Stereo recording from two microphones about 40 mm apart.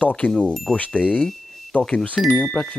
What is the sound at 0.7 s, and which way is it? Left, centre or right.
Speech, left.